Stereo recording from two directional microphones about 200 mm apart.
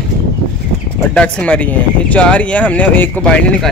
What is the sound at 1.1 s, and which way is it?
Speech, 5° left (ahead or behind).